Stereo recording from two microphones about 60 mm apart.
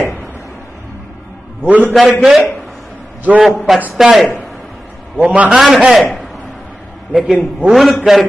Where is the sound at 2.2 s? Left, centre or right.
Centre.